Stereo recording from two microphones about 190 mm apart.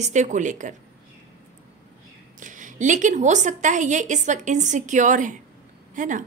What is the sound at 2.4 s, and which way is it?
A woman's voice, 40° right (ahead or behind).